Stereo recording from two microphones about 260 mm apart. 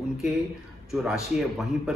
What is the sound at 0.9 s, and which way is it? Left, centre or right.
A man's voice, centre.